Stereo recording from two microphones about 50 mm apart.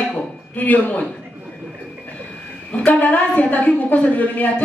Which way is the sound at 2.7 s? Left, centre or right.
Left.